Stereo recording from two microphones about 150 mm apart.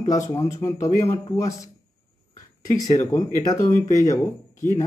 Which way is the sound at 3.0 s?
15° left (ahead or behind).